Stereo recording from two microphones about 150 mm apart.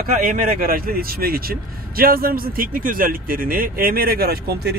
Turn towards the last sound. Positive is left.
turn(degrees=-90)